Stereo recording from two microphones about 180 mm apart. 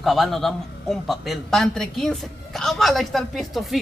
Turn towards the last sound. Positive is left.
turn(degrees=0)  # may be behind; listen again after turning